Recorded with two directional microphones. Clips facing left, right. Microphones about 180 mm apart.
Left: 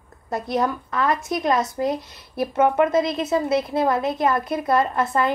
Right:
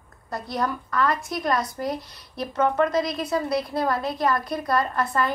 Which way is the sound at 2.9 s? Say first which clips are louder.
Left 4 dB; 25° left (ahead or behind).